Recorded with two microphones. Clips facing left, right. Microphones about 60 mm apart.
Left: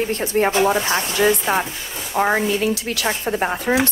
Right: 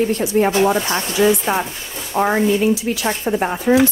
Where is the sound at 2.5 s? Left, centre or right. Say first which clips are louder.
Right 4 dB; left.